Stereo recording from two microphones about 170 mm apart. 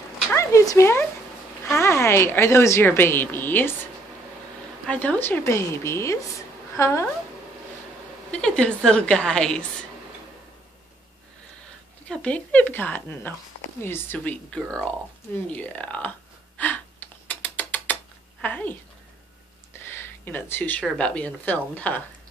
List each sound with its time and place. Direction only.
0.3 s a woman's voice: 15° left (ahead or behind)
4.8 s a woman's voice: 10° left (ahead or behind)
8.3 s a woman's voice: 5° left (ahead or behind)
12.1 s a woman's voice: 5° left (ahead or behind)
16.5 s a sound: 10° left (ahead or behind)
17.3 s music: 10° left (ahead or behind)
18.4 s a woman's voice: 10° left (ahead or behind)
20.0 s a woman's voice: 10° left (ahead or behind)